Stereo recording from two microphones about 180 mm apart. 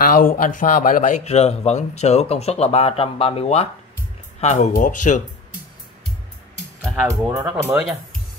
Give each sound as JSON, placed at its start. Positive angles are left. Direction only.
{"t": 0.0, "sound": "speech", "side_deg": 50}
{"t": 7.1, "sound": "speech", "side_deg": -15}